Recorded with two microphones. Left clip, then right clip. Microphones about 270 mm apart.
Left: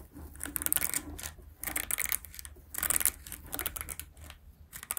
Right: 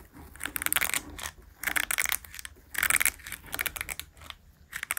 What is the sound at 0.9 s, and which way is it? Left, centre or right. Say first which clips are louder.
Coin: right 7 dB; centre.